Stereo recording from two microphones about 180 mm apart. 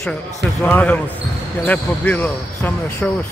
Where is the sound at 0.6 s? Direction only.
10° left (ahead or behind).